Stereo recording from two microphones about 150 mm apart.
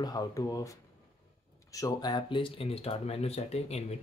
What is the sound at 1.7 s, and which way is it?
Speech, 25° left (ahead or behind).